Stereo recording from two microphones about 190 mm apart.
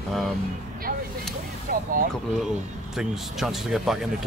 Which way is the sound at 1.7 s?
50° right (ahead or behind).